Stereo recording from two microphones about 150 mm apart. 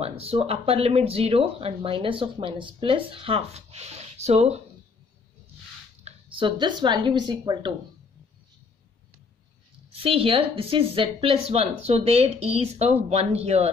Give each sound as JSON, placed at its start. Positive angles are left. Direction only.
{"t": 0.0, "sound": "speech", "side_deg": -40}
{"t": 6.0, "sound": "speech", "side_deg": -35}
{"t": 10.0, "sound": "speech", "side_deg": -40}